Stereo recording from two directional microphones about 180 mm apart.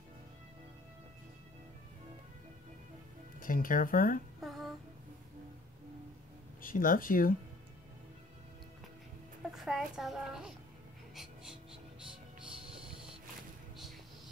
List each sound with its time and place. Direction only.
3.3 s speech: 50° left (ahead or behind)
4.4 s child singing: centre (ahead or behind)
6.6 s speech: 50° left (ahead or behind)
9.5 s a child's voice: centre (ahead or behind)
11.1 s music: 5° right (ahead or behind)